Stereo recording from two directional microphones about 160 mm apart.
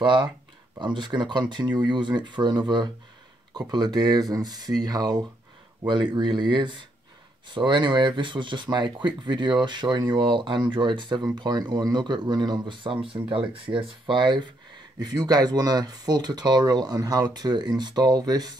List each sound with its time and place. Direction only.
0.0 s speech: 30° right (ahead or behind)